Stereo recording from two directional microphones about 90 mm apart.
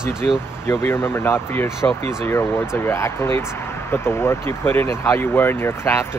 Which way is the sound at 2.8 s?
30° left (ahead or behind).